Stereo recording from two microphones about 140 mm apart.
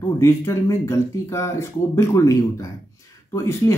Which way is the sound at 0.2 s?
20° left (ahead or behind).